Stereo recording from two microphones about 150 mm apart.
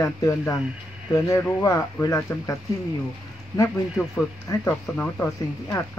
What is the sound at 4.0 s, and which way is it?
Speech, 20° left (ahead or behind).